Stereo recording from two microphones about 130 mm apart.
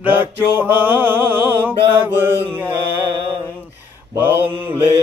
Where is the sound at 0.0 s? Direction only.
15° right (ahead or behind).